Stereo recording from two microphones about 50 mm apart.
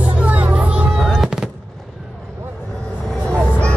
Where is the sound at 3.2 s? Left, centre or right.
Left.